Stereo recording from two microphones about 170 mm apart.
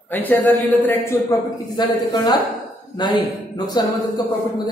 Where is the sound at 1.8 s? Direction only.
25° left (ahead or behind).